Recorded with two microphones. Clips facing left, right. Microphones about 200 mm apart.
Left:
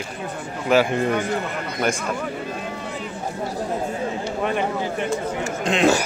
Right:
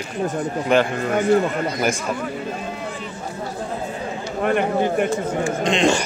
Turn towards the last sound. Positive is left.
turn(degrees=5)  # may be behind; listen again after turning